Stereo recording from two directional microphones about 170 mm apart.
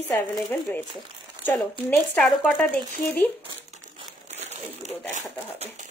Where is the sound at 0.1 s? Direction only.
10° left (ahead or behind).